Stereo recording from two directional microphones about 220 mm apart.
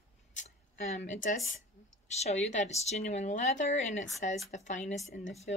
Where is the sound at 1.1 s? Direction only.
35° left (ahead or behind).